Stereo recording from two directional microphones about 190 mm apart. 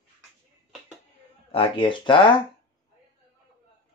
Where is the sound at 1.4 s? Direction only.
30° left (ahead or behind).